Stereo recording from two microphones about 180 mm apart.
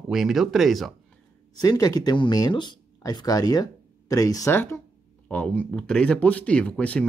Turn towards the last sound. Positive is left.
turn(degrees=5)  # may be behind; listen again after turning